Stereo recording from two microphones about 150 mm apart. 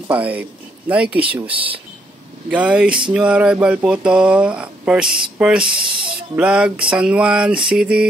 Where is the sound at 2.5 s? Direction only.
10° right (ahead or behind).